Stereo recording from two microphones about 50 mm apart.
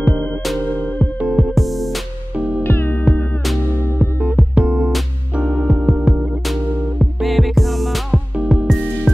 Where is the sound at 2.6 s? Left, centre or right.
Left.